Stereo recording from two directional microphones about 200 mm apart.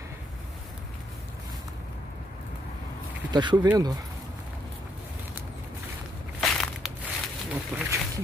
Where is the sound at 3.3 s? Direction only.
20° right (ahead or behind).